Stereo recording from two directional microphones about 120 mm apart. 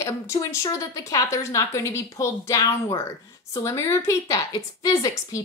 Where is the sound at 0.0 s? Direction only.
25° left (ahead or behind).